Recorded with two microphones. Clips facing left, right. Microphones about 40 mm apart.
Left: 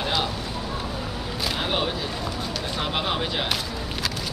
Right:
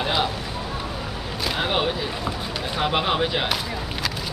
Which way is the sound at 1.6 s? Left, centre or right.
Centre.